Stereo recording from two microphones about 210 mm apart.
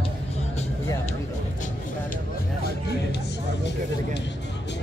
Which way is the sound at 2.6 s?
50° left (ahead or behind).